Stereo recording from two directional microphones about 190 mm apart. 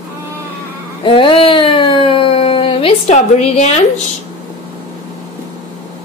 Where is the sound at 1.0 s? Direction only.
25° left (ahead or behind).